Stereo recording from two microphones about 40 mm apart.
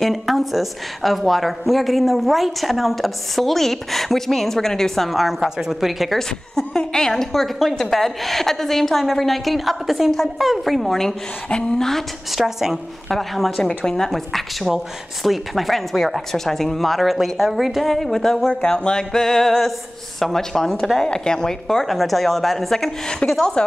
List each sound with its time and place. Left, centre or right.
0.0 s a woman's voice: centre
6.1 s a woman's voice: centre
12.3 s speech: centre
13.1 s a woman's voice: centre
13.6 s a woman's voice: left
18.5 s a woman's voice: left; by 22.9 s centre
23.2 s speech: left